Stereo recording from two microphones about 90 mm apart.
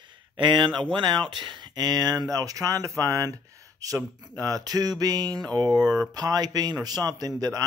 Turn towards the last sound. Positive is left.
turn(degrees=-40)  # may be behind; listen again after turning